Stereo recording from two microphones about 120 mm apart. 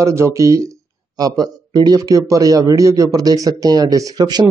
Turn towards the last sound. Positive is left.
turn(degrees=-35)  # may be behind; listen again after turning